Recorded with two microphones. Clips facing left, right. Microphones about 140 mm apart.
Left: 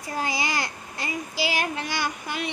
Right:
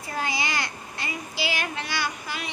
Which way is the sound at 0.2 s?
40° left (ahead or behind).